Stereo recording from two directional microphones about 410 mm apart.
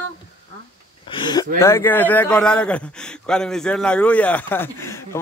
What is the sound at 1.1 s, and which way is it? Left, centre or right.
A man's voice, centre.